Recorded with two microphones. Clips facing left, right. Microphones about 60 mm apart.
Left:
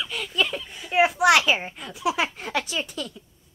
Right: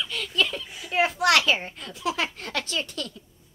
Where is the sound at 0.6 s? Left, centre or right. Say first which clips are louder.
Left 4 dB; centre.